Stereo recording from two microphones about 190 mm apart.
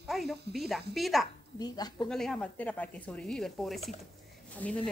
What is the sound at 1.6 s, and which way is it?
Speech, 20° left (ahead or behind).